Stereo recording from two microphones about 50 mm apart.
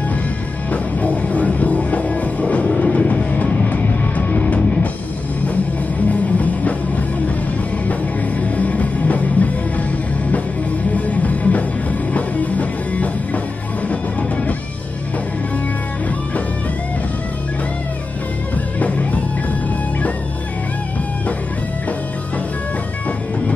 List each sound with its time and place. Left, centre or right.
0.7 s music: left
6.0 s music: left
8.4 s music: left
11.0 s music: left
18.8 s music: left